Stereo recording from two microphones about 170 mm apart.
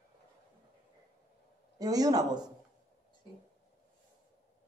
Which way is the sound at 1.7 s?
20° right (ahead or behind).